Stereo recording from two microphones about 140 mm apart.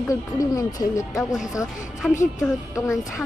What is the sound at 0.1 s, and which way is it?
Speech, 25° left (ahead or behind).